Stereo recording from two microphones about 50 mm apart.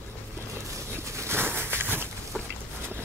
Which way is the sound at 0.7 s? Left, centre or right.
Right.